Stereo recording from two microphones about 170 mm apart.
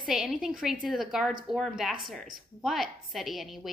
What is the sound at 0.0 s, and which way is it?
A woman's voice, 5° right (ahead or behind).